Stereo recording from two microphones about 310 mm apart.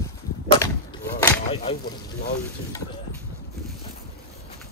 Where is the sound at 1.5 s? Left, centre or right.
Centre.